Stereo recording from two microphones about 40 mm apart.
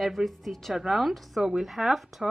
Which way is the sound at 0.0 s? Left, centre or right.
Centre.